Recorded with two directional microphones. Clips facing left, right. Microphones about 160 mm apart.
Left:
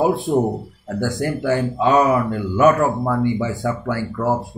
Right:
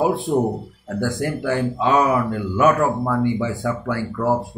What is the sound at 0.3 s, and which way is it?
Speech, 25° left (ahead or behind).